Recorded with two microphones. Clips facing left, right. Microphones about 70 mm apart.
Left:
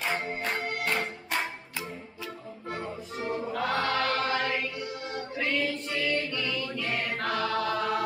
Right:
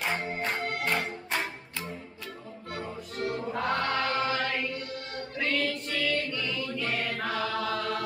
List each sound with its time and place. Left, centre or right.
0.0 s music: centre
2.7 s music: centre
3.6 s choir: centre
4.0 s chant: right
4.4 s music: centre
6.2 s a capella: centre
6.7 s choir: centre